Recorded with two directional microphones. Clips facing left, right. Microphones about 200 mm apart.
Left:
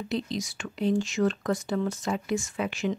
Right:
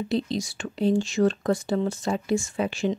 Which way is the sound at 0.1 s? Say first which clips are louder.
Right 3 dB; 30° right (ahead or behind).